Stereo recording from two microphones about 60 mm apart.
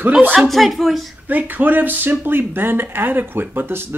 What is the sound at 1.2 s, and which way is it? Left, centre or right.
Speech, right.